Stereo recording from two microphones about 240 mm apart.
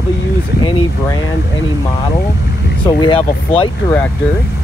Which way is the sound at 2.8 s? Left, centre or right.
Left.